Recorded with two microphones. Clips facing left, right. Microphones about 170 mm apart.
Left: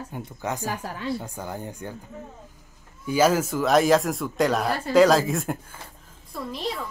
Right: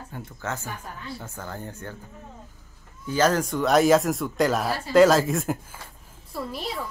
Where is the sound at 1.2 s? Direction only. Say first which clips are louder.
Left 3 dB; 15° left (ahead or behind).